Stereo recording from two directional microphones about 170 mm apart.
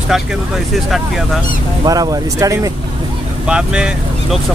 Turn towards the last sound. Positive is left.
turn(degrees=-5)  # may be behind; listen again after turning